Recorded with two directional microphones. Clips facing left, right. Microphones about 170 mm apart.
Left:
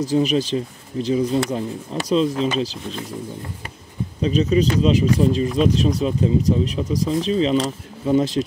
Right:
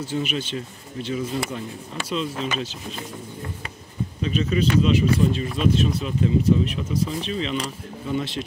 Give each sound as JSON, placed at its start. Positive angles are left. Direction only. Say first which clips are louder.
{"t": 0.0, "sound": "speech", "louder": "left 8 dB", "side_deg": 40}
{"t": 4.2, "sound": "speech", "louder": "left 5 dB", "side_deg": 35}